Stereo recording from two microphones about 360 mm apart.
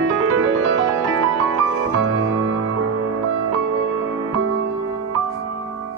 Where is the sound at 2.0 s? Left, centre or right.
Right.